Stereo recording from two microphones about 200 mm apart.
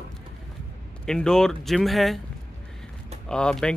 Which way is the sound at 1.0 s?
5° left (ahead or behind).